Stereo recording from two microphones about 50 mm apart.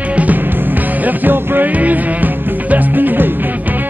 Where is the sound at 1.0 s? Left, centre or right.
Right.